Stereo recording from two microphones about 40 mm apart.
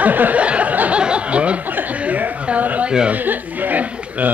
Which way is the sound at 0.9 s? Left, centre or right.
Right.